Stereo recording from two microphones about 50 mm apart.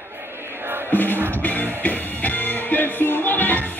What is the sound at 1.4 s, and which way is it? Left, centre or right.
Music, left.